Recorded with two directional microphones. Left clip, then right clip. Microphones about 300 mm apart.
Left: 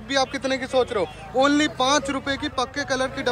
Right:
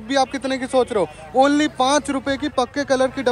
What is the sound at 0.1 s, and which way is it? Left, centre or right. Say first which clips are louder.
Speech: right 3 dB; centre.